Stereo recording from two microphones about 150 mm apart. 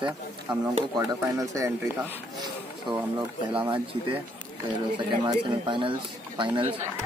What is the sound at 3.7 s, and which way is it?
Speech, 35° right (ahead or behind).